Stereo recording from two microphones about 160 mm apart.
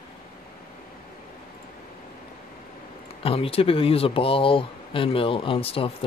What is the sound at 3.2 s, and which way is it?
Speech, 35° left (ahead or behind).